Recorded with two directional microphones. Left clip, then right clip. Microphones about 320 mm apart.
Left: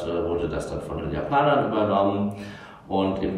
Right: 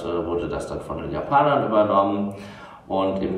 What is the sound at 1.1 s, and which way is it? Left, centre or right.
A man's voice, centre.